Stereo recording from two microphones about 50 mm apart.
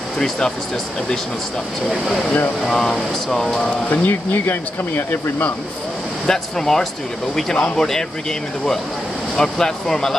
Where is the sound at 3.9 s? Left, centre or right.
Left.